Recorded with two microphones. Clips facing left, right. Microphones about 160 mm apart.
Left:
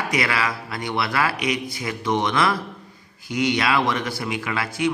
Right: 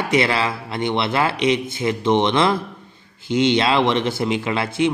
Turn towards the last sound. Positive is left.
turn(degrees=-25)  # may be behind; listen again after turning